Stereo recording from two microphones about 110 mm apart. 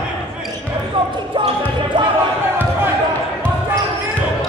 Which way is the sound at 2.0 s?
45° right (ahead or behind).